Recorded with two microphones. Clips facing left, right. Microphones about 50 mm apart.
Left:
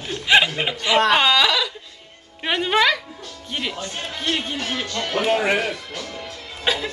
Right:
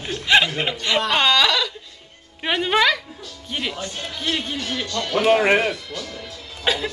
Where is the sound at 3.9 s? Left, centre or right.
Left.